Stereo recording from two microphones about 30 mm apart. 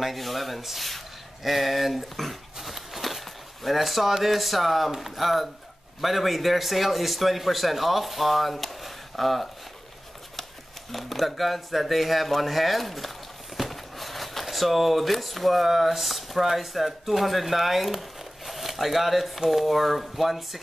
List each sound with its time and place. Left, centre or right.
0.0 s a sound: centre
3.6 s speech: centre
10.9 s speech: centre